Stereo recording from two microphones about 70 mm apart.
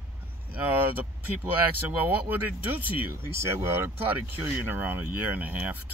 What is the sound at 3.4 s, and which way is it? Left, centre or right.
Speech, right.